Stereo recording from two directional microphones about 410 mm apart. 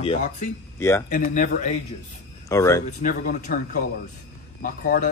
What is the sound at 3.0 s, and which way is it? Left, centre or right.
Speech, centre.